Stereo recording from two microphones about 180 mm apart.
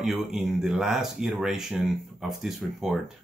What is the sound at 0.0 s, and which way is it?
Speech, centre (ahead or behind).